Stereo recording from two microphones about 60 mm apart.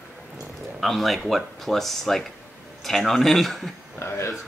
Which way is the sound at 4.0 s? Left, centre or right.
Left.